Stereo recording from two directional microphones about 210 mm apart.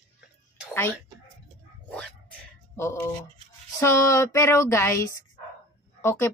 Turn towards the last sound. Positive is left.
turn(degrees=10)  # may be behind; listen again after turning